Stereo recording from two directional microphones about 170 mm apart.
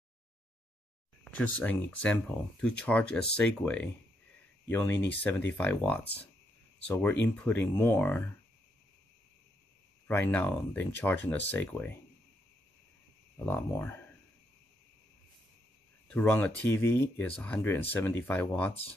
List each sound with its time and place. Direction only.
1.2 s speech: 10° left (ahead or behind)
10.0 s speech: 10° left (ahead or behind)
13.5 s speech: 15° left (ahead or behind)
16.1 s speech: 10° left (ahead or behind)
18.7 s speech: 35° left (ahead or behind)